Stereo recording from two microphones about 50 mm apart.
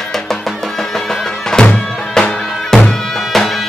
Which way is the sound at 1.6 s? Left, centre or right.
Centre.